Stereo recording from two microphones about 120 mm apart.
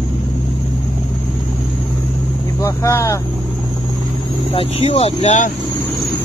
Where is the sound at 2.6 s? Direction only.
25° left (ahead or behind).